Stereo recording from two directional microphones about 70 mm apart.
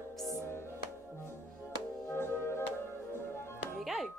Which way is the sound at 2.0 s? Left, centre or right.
Left.